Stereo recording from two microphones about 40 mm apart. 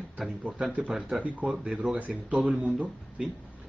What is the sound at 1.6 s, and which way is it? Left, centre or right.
Speech, right.